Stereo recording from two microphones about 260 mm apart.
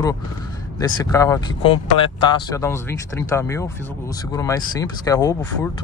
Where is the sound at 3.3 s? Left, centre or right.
Centre.